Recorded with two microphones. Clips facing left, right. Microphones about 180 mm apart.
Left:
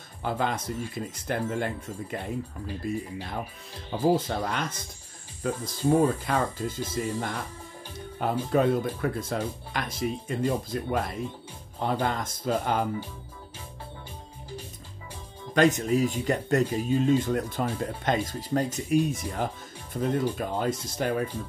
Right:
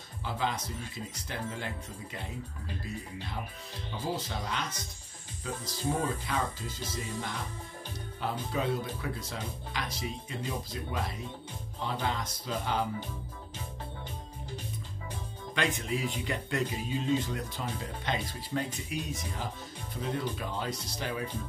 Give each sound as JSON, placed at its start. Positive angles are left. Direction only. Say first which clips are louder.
{"t": 0.2, "sound": "speech", "louder": "left 5 dB", "side_deg": 55}
{"t": 15.5, "sound": "speech", "louder": "left 10 dB", "side_deg": 45}